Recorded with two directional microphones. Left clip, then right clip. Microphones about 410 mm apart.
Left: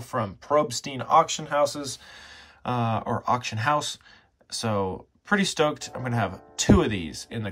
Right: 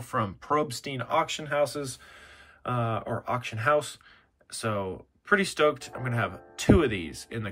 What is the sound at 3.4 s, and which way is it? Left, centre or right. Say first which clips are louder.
Speech: left 1 dB; centre.